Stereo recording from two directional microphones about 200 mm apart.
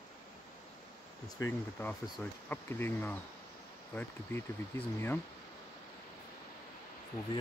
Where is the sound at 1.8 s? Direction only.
10° left (ahead or behind).